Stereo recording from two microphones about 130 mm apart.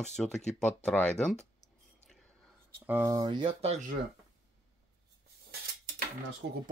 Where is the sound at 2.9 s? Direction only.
20° right (ahead or behind).